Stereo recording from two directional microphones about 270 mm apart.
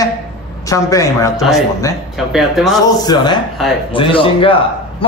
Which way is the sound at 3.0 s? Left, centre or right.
Centre.